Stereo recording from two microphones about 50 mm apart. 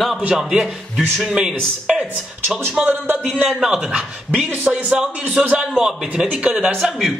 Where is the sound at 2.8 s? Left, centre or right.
Right.